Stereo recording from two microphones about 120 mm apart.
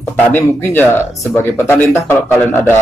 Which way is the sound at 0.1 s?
15° left (ahead or behind).